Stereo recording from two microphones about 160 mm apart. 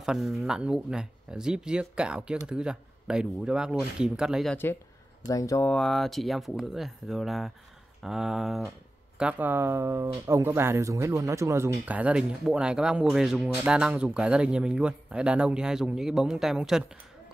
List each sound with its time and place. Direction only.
0.0 s speech: centre (ahead or behind)
5.3 s speech: 20° left (ahead or behind)
5.7 s speech: 5° left (ahead or behind)